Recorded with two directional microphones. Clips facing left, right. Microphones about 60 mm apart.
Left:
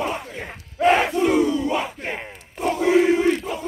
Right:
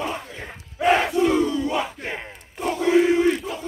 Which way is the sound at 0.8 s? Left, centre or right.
Centre.